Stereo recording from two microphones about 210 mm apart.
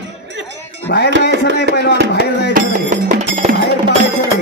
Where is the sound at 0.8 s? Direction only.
50° left (ahead or behind).